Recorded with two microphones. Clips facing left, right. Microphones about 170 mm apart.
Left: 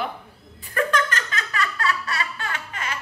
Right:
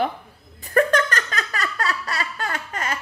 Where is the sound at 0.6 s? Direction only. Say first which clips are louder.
Right 5 dB; 40° right (ahead or behind).